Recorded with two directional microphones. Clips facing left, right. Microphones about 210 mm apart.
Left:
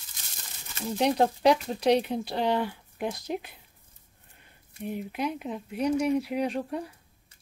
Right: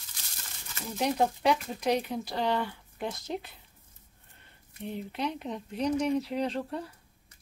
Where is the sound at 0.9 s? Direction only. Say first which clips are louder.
Left 3 dB; 35° left (ahead or behind); by 3.4 s 15° left (ahead or behind).